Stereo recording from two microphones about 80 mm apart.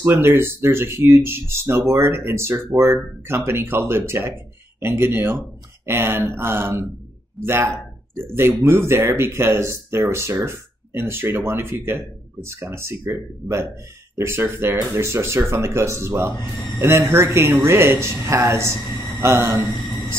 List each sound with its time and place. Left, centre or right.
0.0 s speech: right
5.9 s a sound: right
7.4 s speech: right